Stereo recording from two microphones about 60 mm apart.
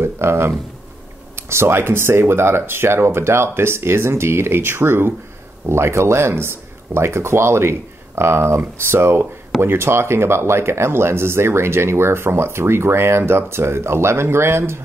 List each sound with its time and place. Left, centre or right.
0.0 s speech: right